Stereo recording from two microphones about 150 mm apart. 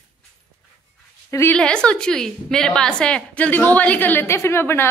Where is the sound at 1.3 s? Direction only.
20° left (ahead or behind).